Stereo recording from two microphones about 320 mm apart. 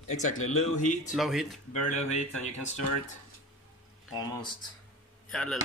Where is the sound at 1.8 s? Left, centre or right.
Left.